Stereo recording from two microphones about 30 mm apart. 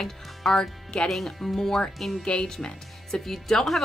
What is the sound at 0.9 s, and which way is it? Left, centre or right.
Speech, left.